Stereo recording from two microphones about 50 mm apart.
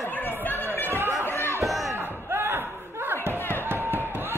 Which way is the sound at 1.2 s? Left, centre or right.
Left.